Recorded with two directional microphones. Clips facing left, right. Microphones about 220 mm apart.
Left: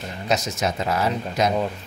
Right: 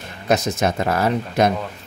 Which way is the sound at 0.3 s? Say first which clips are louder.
Right 5 dB; 55° right (ahead or behind).